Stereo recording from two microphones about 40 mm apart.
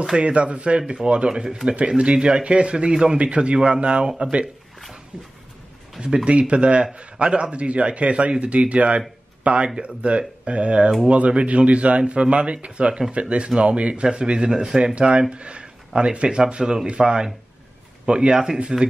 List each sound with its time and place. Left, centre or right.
0.2 s a man's voice: right
5.9 s a man's voice: right